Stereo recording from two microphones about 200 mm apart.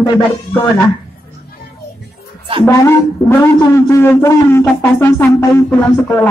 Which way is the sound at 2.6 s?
15° left (ahead or behind).